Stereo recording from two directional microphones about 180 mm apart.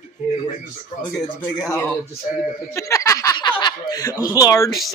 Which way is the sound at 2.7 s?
15° left (ahead or behind).